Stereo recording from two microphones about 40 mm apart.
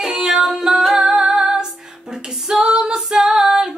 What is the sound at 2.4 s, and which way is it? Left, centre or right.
Female singing, centre.